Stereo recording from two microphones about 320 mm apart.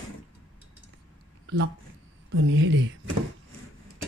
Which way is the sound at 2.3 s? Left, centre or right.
Right.